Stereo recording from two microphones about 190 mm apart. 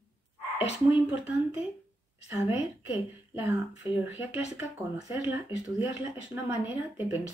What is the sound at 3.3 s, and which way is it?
Speech, 10° right (ahead or behind).